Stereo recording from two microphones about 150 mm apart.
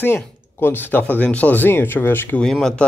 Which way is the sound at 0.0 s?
15° left (ahead or behind).